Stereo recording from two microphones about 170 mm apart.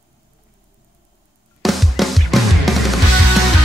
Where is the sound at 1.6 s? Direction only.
Centre (ahead or behind).